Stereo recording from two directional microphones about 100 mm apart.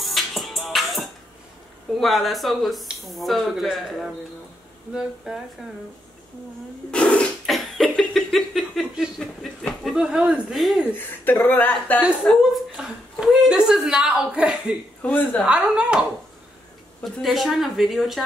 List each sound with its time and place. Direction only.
0.0 s music: centre (ahead or behind)
2.0 s speech: centre (ahead or behind)
6.9 s speech: 10° left (ahead or behind)
7.4 s cough: centre (ahead or behind)
8.1 s speech: 5° left (ahead or behind)
11.0 s speech: 15° left (ahead or behind)
12.7 s speech: 5° right (ahead or behind)
15.0 s a woman's voice: 20° left (ahead or behind)
15.4 s speech: 10° right (ahead or behind)